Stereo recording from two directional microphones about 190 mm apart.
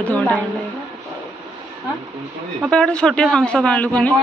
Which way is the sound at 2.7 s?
5° left (ahead or behind).